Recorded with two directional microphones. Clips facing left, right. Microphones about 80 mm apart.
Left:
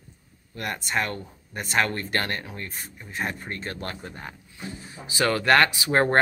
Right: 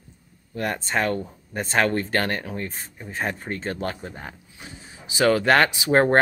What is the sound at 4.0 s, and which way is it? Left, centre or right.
Speech, centre.